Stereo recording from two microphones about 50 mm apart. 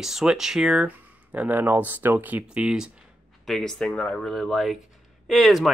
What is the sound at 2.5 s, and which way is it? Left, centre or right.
Speech, centre.